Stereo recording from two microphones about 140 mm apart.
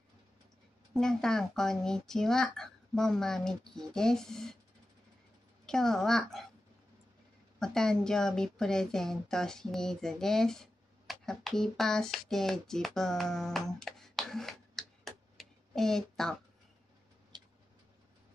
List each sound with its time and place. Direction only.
0.9 s speech: 5° left (ahead or behind)
5.7 s speech: 5° left (ahead or behind)
7.5 s speech: 5° left (ahead or behind)
17.3 s tick-tock: 30° right (ahead or behind)